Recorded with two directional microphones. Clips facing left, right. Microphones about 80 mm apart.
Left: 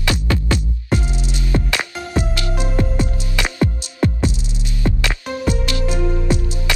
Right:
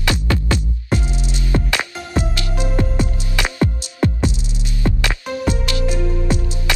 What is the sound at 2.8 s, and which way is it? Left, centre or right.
Music, right.